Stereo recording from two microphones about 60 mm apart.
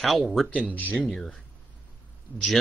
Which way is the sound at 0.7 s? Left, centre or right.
Left.